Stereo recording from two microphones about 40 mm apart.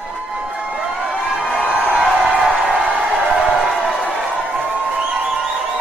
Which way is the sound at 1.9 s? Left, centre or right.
Centre.